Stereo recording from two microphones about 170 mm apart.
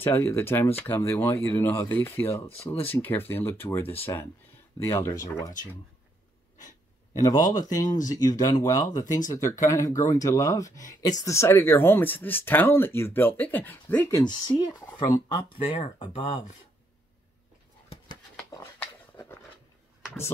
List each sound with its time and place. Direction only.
0.0 s speech: 15° left (ahead or behind)
7.2 s speech: 20° left (ahead or behind)